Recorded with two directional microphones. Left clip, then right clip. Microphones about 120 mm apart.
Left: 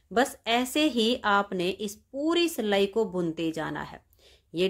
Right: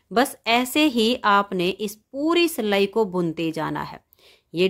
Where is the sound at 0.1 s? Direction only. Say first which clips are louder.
Right 5 dB; 45° right (ahead or behind).